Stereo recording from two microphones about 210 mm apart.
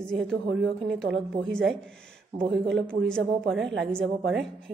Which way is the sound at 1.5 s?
Centre (ahead or behind).